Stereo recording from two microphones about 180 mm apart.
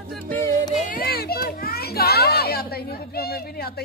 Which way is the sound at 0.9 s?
55° left (ahead or behind).